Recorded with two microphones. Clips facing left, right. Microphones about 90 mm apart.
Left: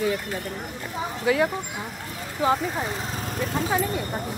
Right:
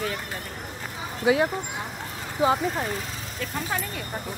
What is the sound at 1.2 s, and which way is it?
Speech, 20° right (ahead or behind).